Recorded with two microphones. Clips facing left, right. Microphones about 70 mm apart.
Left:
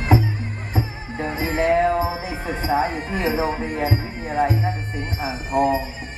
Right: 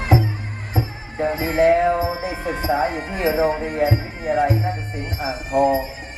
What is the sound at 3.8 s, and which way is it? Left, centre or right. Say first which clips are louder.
Speech: right 3 dB; left.